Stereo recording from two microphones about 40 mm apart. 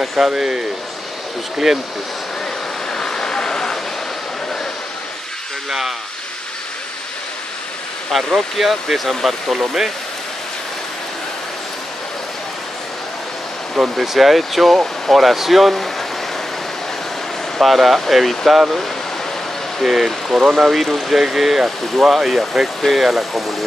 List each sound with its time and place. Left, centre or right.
0.0 s speech: centre
2.9 s vehicle: centre
5.7 s speech: centre
8.1 s speech: centre
13.7 s speech: centre
17.6 s speech: centre
19.8 s speech: centre